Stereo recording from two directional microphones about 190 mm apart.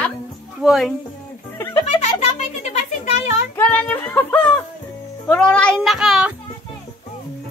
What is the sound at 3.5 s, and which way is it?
Music, 10° left (ahead or behind).